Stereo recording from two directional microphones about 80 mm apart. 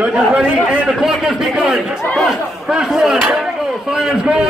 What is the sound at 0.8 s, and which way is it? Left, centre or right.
A man's voice, centre.